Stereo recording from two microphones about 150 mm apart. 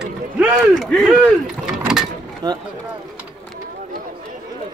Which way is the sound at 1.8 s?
5° right (ahead or behind).